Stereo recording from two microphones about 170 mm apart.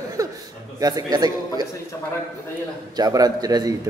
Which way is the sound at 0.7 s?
20° right (ahead or behind).